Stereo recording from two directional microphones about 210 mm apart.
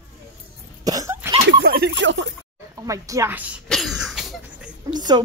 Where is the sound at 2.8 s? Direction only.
15° right (ahead or behind).